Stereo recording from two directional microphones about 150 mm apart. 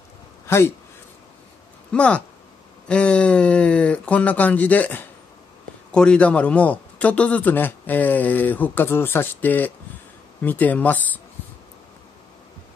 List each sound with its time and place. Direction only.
0.5 s speech: 15° left (ahead or behind)
1.9 s a man's voice: 5° left (ahead or behind)